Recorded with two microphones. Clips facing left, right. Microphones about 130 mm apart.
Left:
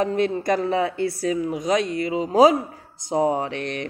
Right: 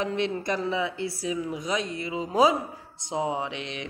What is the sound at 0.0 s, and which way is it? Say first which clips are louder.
Speech: left 6 dB; 45° left (ahead or behind).